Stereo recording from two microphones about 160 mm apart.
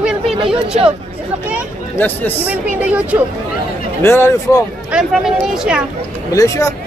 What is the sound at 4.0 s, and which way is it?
Speech, 15° left (ahead or behind).